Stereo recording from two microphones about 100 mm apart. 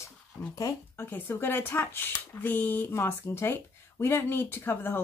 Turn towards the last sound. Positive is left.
turn(degrees=20)  # may be behind; listen again after turning